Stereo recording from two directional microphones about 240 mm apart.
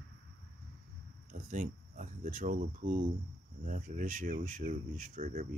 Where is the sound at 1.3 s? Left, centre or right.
Right.